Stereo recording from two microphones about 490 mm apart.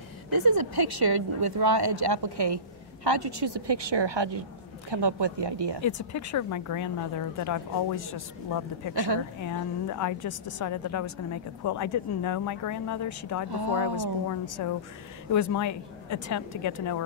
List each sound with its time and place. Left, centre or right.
0.3 s speech: right
5.9 s speech: left
8.9 s speech: right
9.4 s speech: left
13.5 s speech: right
13.9 s speech: left